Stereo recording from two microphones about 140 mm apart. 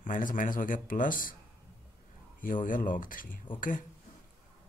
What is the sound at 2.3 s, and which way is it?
Speech, 70° left (ahead or behind).